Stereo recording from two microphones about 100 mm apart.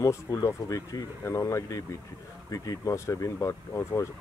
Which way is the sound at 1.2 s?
25° left (ahead or behind).